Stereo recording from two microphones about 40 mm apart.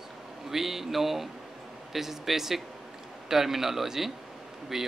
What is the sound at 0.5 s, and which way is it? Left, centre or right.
Speech, centre.